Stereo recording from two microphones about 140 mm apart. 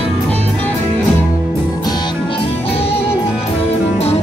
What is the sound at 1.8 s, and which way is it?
Music, 30° left (ahead or behind).